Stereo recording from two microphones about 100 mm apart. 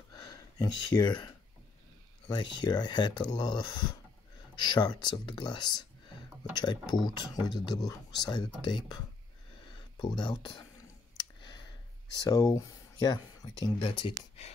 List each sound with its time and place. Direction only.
0.1 s a sound: 40° left (ahead or behind)
2.2 s speech: 50° left (ahead or behind)
12.3 s speech: 40° left (ahead or behind)
13.8 s speech: 60° left (ahead or behind)